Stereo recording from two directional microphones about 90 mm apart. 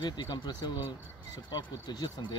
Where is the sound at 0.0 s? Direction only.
55° left (ahead or behind).